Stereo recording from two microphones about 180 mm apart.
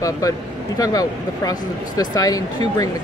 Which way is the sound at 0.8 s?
20° left (ahead or behind).